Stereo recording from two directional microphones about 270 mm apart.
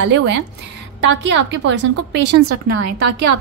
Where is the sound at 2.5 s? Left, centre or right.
Right.